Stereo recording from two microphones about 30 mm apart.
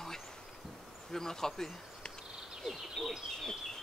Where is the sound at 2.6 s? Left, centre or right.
Centre.